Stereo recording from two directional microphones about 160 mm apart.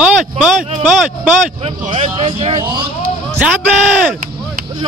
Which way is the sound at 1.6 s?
35° right (ahead or behind).